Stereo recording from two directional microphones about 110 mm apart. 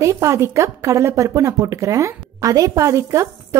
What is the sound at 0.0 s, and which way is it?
A woman's voice, 25° right (ahead or behind).